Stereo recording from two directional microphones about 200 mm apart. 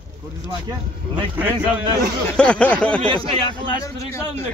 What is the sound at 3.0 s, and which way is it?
Speech, 25° right (ahead or behind).